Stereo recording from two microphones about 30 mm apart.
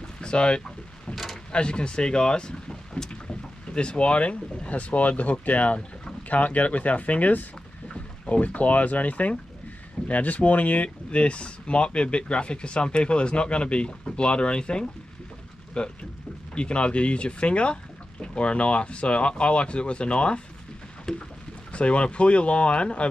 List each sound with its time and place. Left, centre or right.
0.2 s speech: left
1.1 s mechanisms: centre
1.5 s speech: left
11.1 s speech: left
21.1 s rowboat: centre
21.7 s speech: left